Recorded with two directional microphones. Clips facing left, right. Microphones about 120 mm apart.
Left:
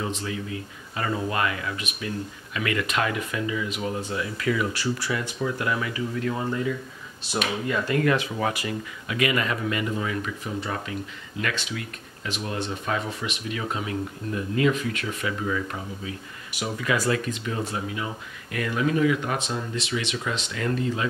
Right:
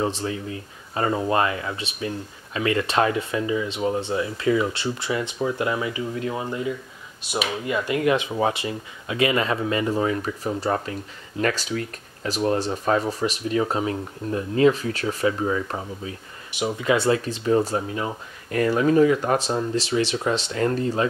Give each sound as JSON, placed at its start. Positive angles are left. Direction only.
{"t": 0.0, "sound": "speech", "side_deg": -35}